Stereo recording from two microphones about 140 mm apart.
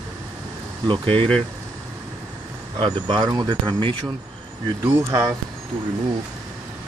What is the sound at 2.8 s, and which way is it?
Speech, 35° right (ahead or behind).